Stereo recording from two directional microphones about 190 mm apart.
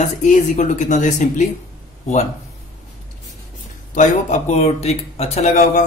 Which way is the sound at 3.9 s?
40° left (ahead or behind).